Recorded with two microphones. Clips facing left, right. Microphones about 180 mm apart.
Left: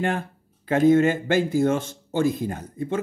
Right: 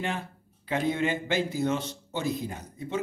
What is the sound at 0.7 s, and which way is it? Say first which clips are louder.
Speech: left 10 dB; 45° left (ahead or behind).